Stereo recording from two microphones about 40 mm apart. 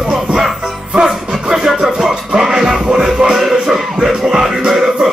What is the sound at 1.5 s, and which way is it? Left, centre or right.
Music, centre.